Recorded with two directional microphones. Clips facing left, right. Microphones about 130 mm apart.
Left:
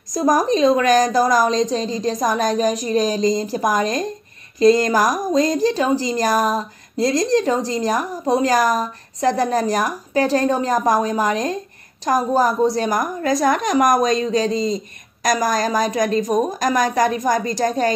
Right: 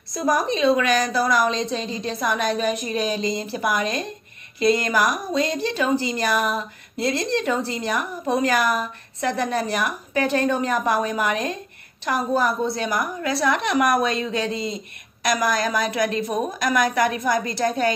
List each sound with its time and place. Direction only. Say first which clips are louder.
0.1 s a woman's voice: left 5 dB; 40° left (ahead or behind)